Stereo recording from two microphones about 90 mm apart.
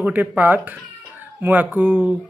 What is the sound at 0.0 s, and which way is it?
Speech, 20° right (ahead or behind).